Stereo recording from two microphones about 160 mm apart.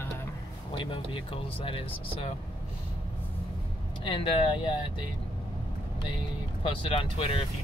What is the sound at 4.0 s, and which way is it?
Speech, 30° left (ahead or behind).